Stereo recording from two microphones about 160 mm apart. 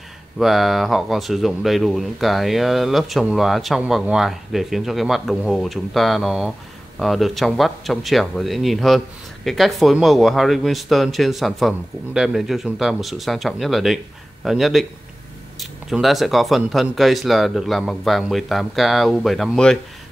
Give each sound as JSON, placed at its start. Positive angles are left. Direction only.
{"t": 0.4, "sound": "speech", "side_deg": 0}